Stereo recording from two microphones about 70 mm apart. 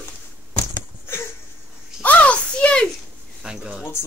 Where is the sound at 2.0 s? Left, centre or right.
Centre.